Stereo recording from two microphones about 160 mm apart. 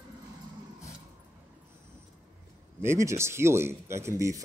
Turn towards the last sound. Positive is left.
turn(degrees=-20)  # may be behind; listen again after turning